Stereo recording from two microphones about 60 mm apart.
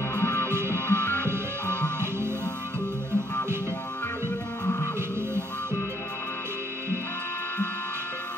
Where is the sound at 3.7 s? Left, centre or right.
Left.